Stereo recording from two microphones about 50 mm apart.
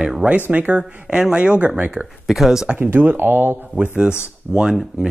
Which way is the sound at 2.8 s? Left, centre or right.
Right.